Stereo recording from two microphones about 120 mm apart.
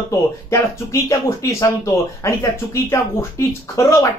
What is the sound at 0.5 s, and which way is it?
Speech, 25° left (ahead or behind).